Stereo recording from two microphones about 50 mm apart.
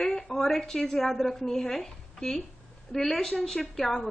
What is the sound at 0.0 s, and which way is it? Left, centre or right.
A woman's voice, centre.